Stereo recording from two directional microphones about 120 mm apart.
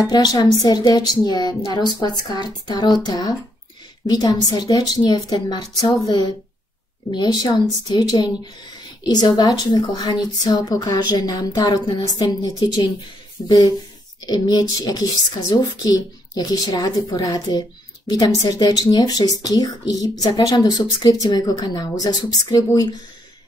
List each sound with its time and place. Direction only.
0.0 s a woman's voice: 35° left (ahead or behind)